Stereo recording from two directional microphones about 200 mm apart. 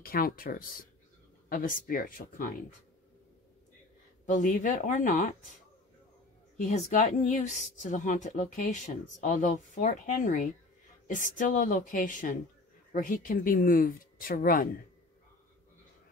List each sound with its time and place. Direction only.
0.0 s speech: 45° left (ahead or behind)
4.3 s speech: 40° left (ahead or behind)
6.6 s speech: 40° left (ahead or behind)